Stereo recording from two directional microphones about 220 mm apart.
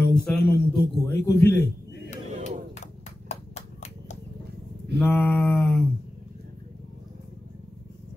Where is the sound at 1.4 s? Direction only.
50° left (ahead or behind).